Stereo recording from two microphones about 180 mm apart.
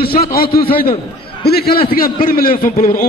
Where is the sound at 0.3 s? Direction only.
55° left (ahead or behind).